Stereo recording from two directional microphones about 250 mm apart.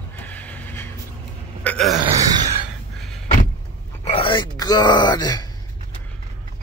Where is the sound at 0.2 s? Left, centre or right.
Centre.